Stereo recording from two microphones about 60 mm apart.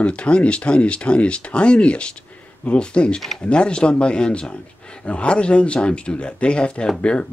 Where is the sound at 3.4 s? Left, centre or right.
Centre.